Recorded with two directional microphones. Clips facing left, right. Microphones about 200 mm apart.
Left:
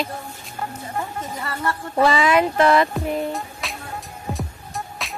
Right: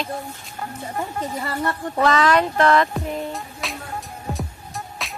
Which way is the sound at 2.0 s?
10° left (ahead or behind).